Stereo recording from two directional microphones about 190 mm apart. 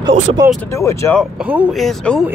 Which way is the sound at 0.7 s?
15° left (ahead or behind).